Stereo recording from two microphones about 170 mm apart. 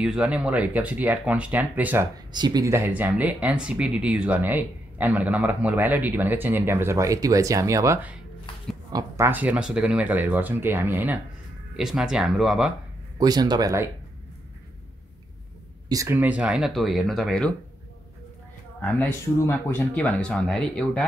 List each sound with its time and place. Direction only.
0.0 s speech: 5° right (ahead or behind)
2.3 s speech: 25° right (ahead or behind); by 12.7 s centre (ahead or behind)
13.2 s speech: 25° right (ahead or behind)
15.9 s speech: 15° right (ahead or behind); by 17.6 s 5° left (ahead or behind)
18.8 s speech: 10° left (ahead or behind)